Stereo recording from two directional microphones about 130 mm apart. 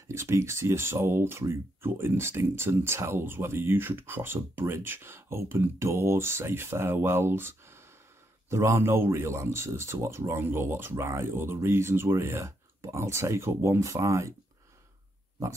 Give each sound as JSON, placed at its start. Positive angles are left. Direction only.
{"t": 0.1, "sound": "speech", "side_deg": -20}